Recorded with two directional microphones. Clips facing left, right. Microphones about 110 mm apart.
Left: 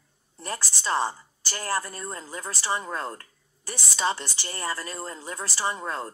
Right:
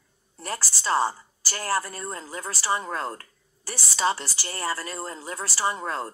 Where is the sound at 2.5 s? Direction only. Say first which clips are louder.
Right 2 dB; 30° right (ahead or behind).